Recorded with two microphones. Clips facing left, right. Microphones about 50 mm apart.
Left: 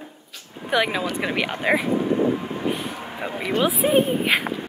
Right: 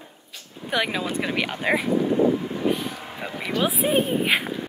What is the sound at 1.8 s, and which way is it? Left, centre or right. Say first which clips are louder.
Vehicle: right 1 dB; left.